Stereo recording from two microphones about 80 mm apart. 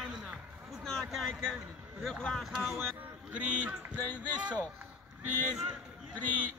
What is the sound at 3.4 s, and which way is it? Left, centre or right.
Speech, centre.